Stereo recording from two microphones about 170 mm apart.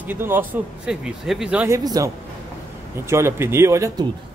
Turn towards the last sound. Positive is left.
turn(degrees=-15)  # may be behind; listen again after turning